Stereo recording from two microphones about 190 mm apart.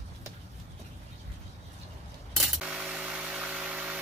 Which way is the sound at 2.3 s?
Centre (ahead or behind).